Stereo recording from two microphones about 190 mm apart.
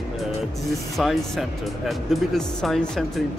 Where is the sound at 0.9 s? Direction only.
Centre (ahead or behind).